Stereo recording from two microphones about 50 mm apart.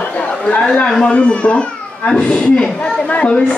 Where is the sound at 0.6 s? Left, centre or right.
Centre.